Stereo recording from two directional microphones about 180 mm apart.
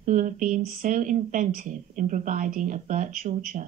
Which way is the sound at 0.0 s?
45° right (ahead or behind).